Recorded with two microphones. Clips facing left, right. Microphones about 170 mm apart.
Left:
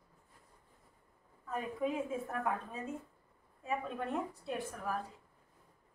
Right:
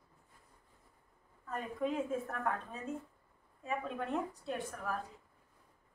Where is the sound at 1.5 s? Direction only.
5° left (ahead or behind).